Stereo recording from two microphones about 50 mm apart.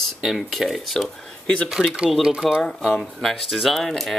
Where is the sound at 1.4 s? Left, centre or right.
Left.